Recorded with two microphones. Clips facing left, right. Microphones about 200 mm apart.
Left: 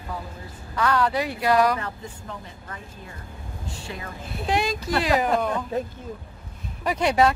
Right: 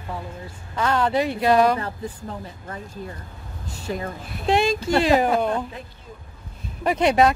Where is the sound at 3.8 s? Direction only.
40° right (ahead or behind).